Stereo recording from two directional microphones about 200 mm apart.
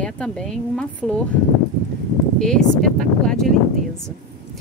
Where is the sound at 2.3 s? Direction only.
5° left (ahead or behind).